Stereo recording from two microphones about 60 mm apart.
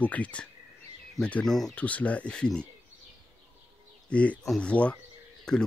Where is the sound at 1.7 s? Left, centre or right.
Left.